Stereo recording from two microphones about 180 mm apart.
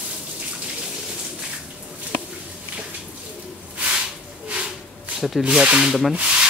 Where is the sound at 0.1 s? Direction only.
5° right (ahead or behind).